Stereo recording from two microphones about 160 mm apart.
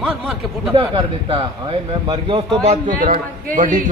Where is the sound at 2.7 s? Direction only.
60° right (ahead or behind).